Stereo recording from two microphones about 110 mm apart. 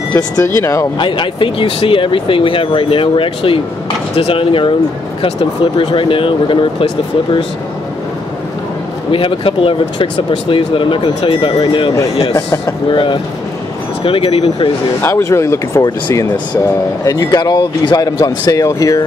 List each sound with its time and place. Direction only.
0.6 s speech: 25° left (ahead or behind)
0.9 s speech: 45° left (ahead or behind)
9.1 s speech: 55° left (ahead or behind)
12.4 s speech: 25° left (ahead or behind)
12.9 s speech: 50° left (ahead or behind)
15.0 s speech: 20° left (ahead or behind)